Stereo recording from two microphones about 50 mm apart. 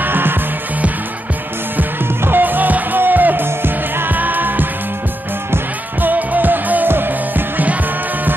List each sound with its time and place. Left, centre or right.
0.0 s music: right
2.2 s music: right
5.9 s music: right